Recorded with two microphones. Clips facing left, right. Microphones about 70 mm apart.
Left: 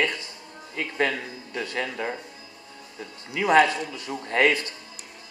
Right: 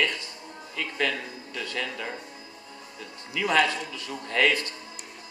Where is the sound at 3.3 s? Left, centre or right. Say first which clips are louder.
Left 5 dB; left.